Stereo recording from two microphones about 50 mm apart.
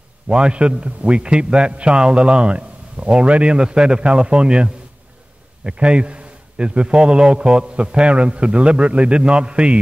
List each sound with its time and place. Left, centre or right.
0.3 s a man's voice: centre